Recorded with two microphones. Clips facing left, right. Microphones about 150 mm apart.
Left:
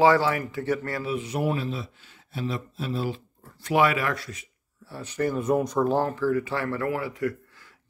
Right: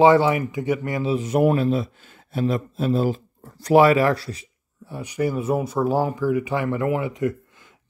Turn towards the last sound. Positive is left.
turn(degrees=-20)  # may be behind; listen again after turning